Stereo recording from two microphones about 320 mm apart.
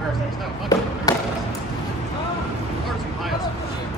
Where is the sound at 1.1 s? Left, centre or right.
Centre.